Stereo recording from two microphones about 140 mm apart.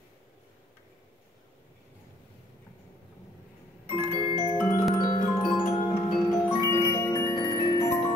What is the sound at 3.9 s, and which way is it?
Music, 45° left (ahead or behind).